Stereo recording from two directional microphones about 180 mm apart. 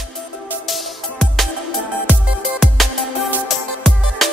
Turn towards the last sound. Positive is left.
turn(degrees=0)  # may be behind; listen again after turning